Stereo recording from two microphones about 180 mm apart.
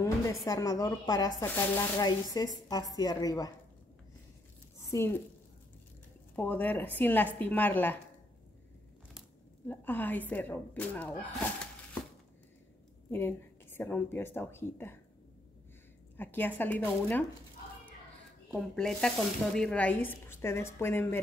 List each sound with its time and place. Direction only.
0.5 s a woman's voice: 20° left (ahead or behind)
4.9 s speech: 15° left (ahead or behind)
6.3 s speech: 10° left (ahead or behind)
9.7 s speech: 10° left (ahead or behind)
13.1 s speech: 10° left (ahead or behind)
16.2 s speech: 10° left (ahead or behind)
18.8 s speech: 5° left (ahead or behind)